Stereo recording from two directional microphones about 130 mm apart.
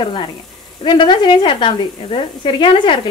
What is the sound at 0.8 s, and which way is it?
A woman's voice, 40° left (ahead or behind).